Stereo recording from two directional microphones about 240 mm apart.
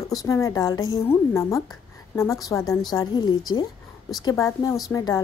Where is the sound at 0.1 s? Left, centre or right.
Centre.